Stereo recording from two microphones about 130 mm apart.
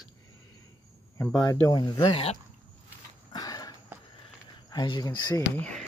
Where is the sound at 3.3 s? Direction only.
30° left (ahead or behind).